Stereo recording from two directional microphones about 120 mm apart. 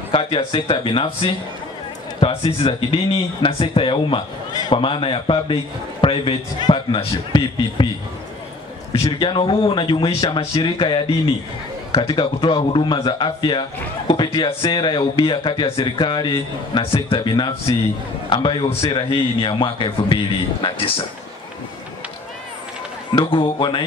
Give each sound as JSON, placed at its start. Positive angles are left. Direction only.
{"t": 0.1, "sound": "a man's voice", "side_deg": 45}
{"t": 8.9, "sound": "a man's voice", "side_deg": 50}
{"t": 23.1, "sound": "a man's voice", "side_deg": 45}